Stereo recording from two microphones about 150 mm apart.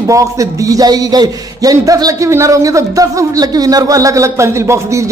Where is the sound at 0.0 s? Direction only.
20° right (ahead or behind).